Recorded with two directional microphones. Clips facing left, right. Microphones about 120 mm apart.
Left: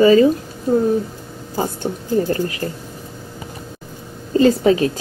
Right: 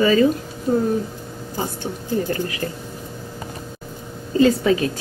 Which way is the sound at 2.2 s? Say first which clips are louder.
Left 3 dB; 35° left (ahead or behind).